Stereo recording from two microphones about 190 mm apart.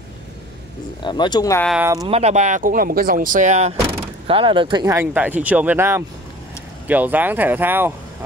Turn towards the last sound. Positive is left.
turn(degrees=-10)  # may be behind; listen again after turning